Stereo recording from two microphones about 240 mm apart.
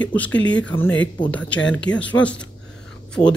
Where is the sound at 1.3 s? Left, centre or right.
Centre.